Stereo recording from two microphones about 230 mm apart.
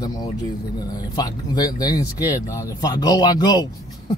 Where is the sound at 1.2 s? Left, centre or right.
Centre.